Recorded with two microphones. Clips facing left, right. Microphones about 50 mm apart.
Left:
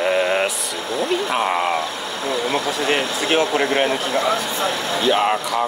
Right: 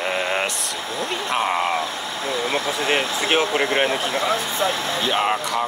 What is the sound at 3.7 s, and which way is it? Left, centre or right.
Speech, centre.